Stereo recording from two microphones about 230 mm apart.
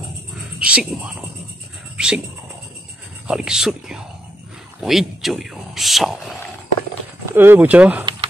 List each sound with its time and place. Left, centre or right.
0.6 s speech: centre
2.0 s cat: centre
3.3 s speech: centre
7.3 s speech: centre
8.0 s a sound: centre